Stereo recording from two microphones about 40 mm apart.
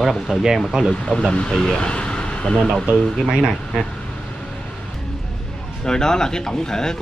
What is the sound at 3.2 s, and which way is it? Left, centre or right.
Speech, centre.